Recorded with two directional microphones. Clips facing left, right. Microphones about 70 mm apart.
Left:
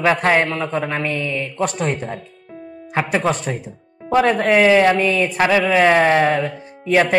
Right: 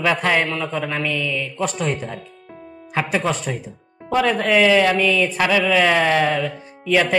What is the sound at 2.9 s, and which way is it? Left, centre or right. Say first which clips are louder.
Speech: left 2 dB; left.